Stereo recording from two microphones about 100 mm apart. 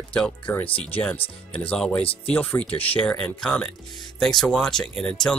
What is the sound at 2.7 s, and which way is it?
Speech, 70° left (ahead or behind).